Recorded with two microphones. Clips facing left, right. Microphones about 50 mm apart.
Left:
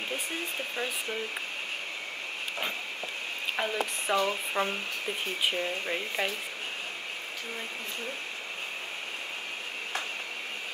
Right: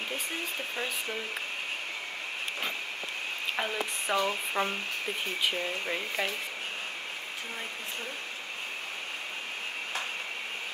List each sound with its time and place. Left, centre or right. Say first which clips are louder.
3.5 s speech: left 3 dB; centre